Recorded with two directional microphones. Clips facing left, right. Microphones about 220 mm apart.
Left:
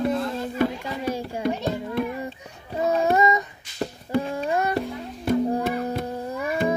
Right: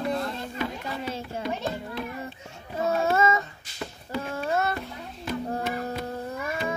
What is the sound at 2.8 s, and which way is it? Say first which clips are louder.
Child singing: left 3 dB; 15° left (ahead or behind).